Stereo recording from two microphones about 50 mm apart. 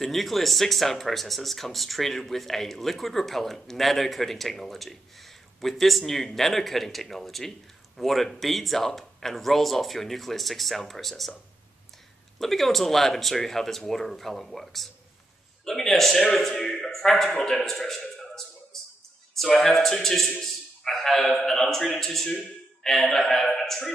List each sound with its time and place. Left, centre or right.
0.0 s speech: centre
12.4 s a man's voice: centre